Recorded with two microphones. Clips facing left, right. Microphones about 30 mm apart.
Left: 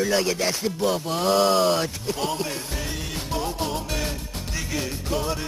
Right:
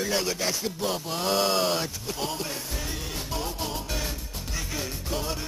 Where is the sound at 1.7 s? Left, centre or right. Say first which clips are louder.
Left 5 dB; centre.